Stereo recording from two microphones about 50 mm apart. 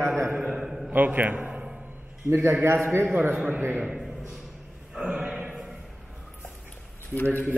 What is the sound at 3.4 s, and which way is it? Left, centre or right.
Speech, right.